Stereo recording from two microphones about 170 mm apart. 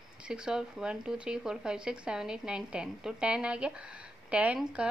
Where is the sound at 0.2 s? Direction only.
5° right (ahead or behind).